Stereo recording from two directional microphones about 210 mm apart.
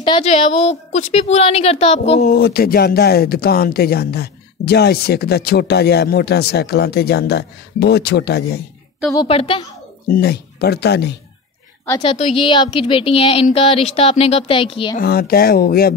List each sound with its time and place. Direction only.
0.0 s speech: 25° left (ahead or behind)
2.3 s speech: 50° left (ahead or behind)
9.1 s speech: 25° left (ahead or behind)
10.0 s speech: 45° left (ahead or behind)
12.0 s speech: 25° left (ahead or behind)
15.0 s speech: 45° left (ahead or behind)